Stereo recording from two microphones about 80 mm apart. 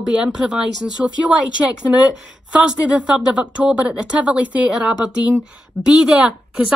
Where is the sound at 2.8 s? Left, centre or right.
Centre.